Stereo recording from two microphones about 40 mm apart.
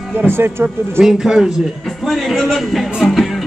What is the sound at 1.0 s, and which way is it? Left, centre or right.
Speech, centre.